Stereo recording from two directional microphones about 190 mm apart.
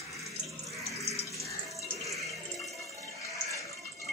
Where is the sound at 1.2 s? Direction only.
15° left (ahead or behind).